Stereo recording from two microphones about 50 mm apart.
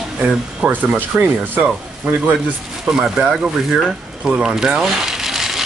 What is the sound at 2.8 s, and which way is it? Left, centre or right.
Speech, centre.